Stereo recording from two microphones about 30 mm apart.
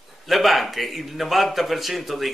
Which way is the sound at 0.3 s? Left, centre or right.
Centre.